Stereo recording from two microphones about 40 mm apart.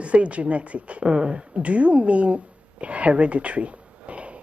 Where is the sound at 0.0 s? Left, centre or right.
Right.